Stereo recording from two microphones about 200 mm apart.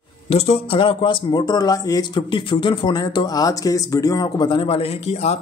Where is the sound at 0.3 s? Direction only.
30° left (ahead or behind).